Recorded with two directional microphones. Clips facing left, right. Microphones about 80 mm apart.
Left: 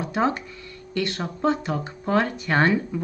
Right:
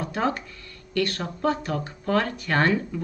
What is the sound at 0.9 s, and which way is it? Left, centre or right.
Speech, centre.